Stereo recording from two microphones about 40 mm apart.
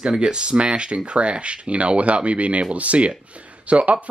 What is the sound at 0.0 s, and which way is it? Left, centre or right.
Speech, right.